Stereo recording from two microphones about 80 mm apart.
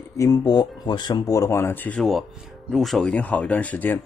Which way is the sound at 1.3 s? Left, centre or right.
Left.